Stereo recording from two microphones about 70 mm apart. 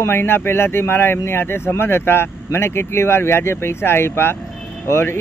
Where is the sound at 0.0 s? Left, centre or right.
Left.